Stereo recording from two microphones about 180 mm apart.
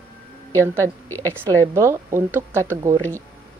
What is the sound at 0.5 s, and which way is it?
A woman's voice, 15° right (ahead or behind).